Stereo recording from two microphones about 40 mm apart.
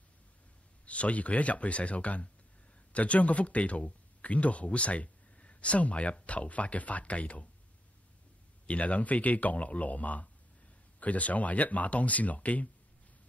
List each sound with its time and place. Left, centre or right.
0.8 s speech: left
8.6 s speech: left